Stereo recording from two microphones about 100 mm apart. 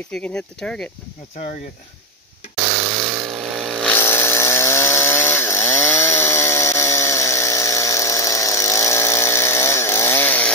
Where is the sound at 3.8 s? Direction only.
20° left (ahead or behind).